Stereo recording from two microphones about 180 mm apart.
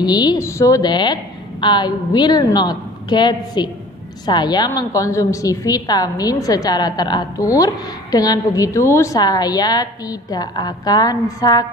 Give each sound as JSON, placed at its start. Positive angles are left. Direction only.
{"t": 0.0, "sound": "a woman's voice", "side_deg": 20}